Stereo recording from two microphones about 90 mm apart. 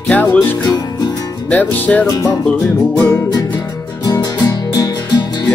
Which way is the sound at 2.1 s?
40° left (ahead or behind).